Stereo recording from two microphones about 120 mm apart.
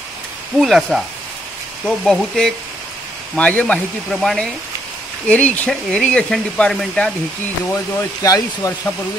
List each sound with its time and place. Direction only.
0.6 s speech: centre (ahead or behind)
7.7 s speech: 30° left (ahead or behind)